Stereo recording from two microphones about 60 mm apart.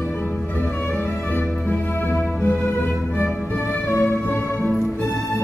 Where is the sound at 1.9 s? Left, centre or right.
Left.